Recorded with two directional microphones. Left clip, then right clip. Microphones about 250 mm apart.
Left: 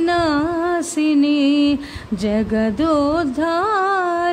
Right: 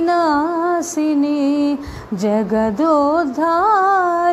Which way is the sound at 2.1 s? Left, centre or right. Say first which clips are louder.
Right 3 dB; centre.